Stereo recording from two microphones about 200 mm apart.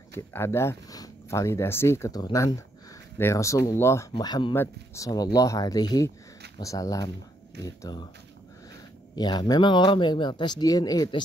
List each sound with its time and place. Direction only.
0.1 s speech: 10° left (ahead or behind)
9.1 s speech: 20° left (ahead or behind)